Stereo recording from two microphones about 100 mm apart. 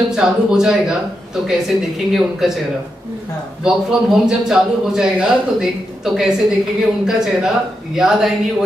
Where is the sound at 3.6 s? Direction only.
5° right (ahead or behind).